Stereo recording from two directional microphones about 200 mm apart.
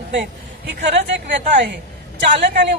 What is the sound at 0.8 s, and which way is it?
Speech, 60° right (ahead or behind).